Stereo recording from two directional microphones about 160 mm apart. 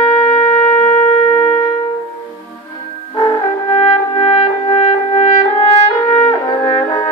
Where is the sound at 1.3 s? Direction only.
30° left (ahead or behind).